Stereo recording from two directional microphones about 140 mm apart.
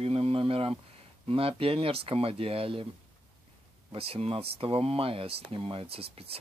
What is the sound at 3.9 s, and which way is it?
Speech, 45° right (ahead or behind).